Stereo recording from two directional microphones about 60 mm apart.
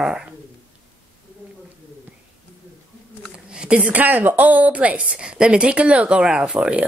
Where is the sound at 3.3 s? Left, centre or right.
Centre.